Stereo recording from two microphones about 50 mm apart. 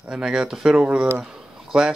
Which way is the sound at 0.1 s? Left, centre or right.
Centre.